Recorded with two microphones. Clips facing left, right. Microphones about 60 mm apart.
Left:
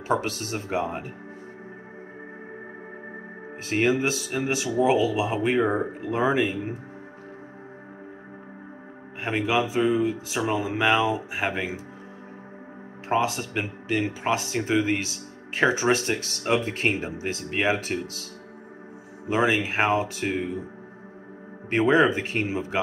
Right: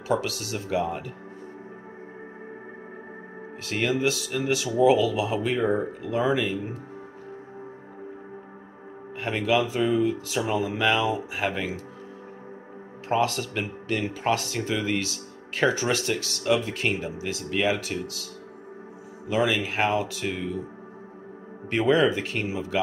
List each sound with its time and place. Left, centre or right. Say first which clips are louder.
0.1 s speech: left 1 dB; left
3.6 s speech: left 2 dB; left
9.2 s speech: even; left
13.1 s speech: even; centre
21.6 s speech: left 1 dB; left